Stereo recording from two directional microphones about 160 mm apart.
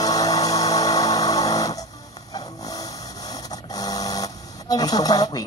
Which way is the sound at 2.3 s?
25° left (ahead or behind).